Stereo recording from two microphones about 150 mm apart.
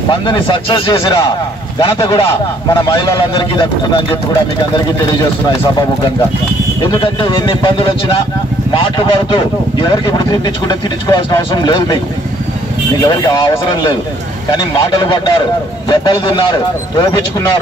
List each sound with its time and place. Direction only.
0.1 s speech: 35° left (ahead or behind)
6.8 s speech: 30° left (ahead or behind)
13.0 s speech: 25° left (ahead or behind)